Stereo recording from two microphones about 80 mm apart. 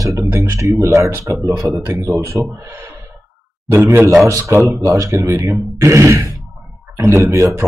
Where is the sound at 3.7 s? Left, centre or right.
Right.